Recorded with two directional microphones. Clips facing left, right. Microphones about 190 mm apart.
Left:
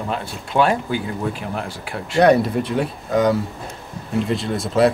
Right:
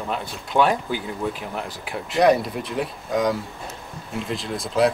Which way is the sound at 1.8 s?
Centre (ahead or behind).